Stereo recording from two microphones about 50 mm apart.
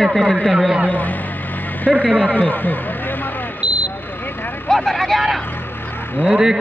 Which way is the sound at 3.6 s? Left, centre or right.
Right.